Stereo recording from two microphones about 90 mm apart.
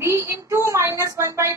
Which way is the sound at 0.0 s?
25° right (ahead or behind).